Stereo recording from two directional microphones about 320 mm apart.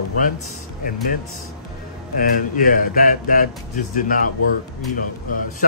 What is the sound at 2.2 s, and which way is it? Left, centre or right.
Speech, left.